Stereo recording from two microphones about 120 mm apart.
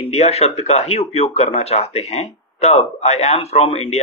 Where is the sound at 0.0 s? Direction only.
60° left (ahead or behind).